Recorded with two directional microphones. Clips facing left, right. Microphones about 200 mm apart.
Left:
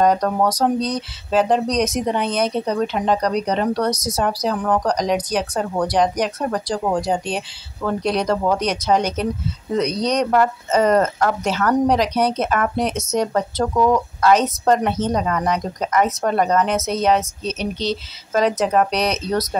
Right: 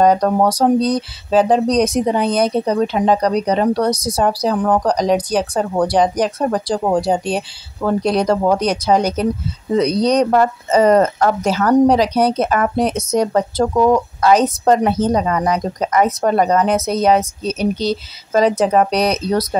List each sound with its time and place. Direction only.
0.2 s speech: 30° right (ahead or behind)